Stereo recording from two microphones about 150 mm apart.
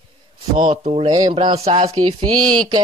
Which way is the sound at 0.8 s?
40° right (ahead or behind).